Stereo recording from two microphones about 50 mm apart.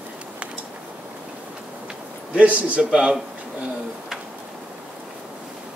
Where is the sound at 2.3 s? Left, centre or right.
Right.